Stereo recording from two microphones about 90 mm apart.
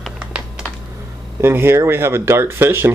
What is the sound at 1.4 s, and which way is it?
Speech, 25° right (ahead or behind).